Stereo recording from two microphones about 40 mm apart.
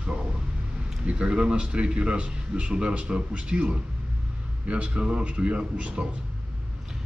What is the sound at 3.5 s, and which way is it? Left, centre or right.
A man's voice, right.